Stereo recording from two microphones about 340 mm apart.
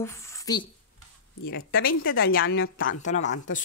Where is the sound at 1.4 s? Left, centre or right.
Left.